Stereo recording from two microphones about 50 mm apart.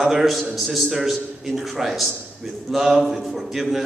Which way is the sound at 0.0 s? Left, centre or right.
Centre.